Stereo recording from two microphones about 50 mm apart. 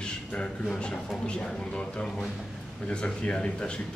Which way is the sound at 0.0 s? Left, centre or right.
Centre.